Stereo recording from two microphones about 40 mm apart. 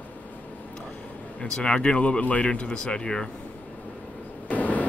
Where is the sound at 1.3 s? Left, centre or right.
Left.